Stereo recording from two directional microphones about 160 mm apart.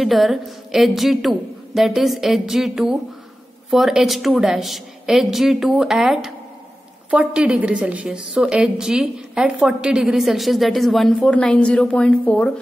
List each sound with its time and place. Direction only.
0.0 s a woman's voice: centre (ahead or behind)